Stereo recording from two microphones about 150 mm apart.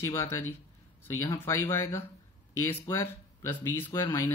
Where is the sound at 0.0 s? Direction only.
15° left (ahead or behind).